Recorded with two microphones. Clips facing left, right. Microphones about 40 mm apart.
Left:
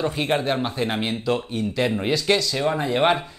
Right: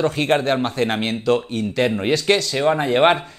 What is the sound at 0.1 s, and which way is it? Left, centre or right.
Speech, right.